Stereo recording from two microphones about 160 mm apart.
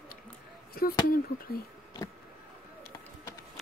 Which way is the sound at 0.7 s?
70° left (ahead or behind).